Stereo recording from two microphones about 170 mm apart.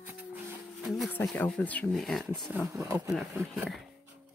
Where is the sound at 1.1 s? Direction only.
10° left (ahead or behind).